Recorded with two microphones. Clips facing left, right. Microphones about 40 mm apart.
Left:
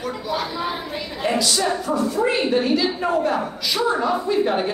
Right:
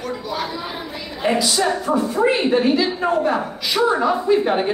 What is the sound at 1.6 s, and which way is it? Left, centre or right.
A woman's voice, right.